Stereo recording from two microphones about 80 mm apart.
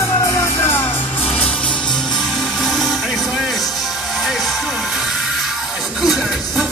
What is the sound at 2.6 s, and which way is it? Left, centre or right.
Music, centre.